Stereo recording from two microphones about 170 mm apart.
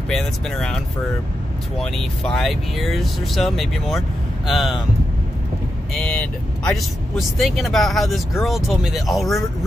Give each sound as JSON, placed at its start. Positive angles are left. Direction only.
{"t": 0.1, "sound": "speech", "side_deg": 5}
{"t": 5.9, "sound": "speech", "side_deg": 5}